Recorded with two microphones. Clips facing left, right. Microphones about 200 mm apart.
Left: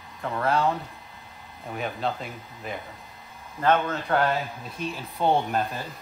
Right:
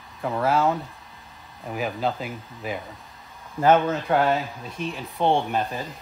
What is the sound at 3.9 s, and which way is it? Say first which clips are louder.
Speech: right 3 dB; 5° right (ahead or behind).